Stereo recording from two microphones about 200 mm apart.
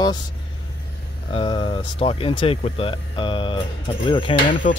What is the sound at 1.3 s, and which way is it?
Speech, 25° left (ahead or behind).